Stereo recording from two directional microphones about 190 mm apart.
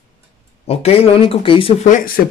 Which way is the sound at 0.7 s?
30° left (ahead or behind).